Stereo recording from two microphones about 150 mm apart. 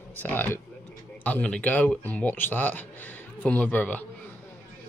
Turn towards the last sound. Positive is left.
turn(degrees=10)  # may be behind; listen again after turning